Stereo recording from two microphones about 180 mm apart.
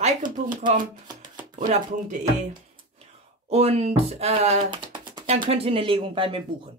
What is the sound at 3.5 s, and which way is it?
Speech, 35° right (ahead or behind).